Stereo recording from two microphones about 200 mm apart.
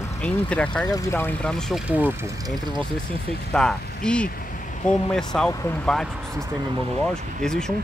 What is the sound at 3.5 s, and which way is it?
Speech, 5° left (ahead or behind).